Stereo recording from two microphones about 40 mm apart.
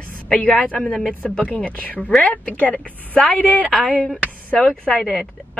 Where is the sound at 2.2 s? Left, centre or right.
Left.